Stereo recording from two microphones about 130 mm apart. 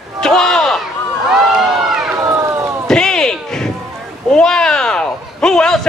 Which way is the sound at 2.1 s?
25° right (ahead or behind).